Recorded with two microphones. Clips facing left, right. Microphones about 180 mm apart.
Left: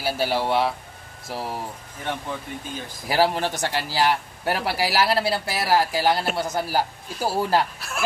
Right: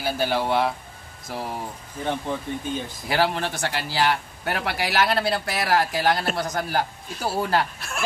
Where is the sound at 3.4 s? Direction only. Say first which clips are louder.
Left 2 dB; 15° left (ahead or behind).